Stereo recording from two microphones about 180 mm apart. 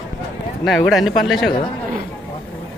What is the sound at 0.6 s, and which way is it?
Speech, centre (ahead or behind).